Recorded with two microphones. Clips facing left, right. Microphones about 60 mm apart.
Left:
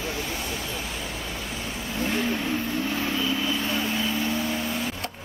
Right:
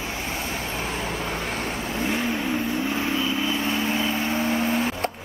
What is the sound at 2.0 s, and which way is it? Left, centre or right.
Vehicle, centre.